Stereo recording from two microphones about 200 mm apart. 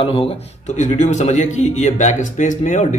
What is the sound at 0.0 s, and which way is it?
A man's voice, 30° left (ahead or behind).